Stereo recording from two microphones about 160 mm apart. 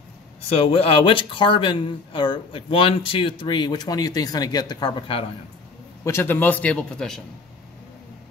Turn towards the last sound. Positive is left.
turn(degrees=5)  # may be behind; listen again after turning